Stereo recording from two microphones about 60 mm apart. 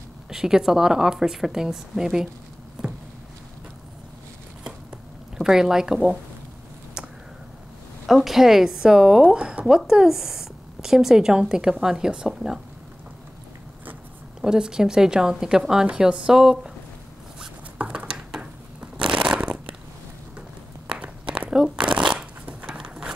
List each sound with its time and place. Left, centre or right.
0.3 s a woman's voice: centre
5.4 s a woman's voice: centre
8.1 s a woman's voice: centre
14.4 s a woman's voice: centre
17.7 s a sound: centre
18.4 s shuffling cards: centre
20.3 s crumpling: centre
22.8 s a sound: centre